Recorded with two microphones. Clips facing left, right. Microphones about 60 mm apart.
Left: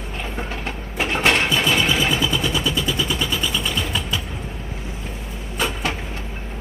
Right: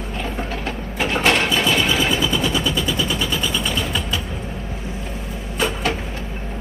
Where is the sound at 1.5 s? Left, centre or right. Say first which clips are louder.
Right 1 dB; centre.